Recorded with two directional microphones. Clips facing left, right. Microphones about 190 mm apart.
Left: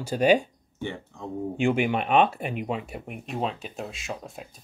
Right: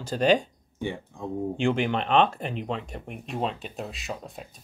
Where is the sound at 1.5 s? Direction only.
10° left (ahead or behind).